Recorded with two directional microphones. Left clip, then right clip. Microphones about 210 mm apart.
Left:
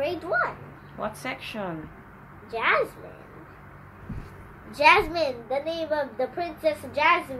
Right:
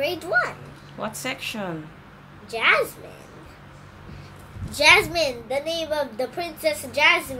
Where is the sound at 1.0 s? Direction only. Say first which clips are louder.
Right 2 dB; 40° right (ahead or behind).